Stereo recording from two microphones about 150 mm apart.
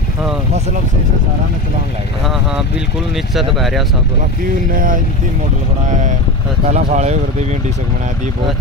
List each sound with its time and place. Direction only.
3.5 s speech: centre (ahead or behind)
5.9 s speech: 55° right (ahead or behind)